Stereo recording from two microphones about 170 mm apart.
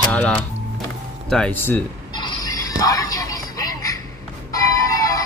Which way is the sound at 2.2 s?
20° left (ahead or behind).